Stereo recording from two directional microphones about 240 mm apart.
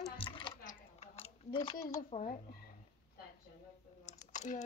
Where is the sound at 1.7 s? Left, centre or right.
Left.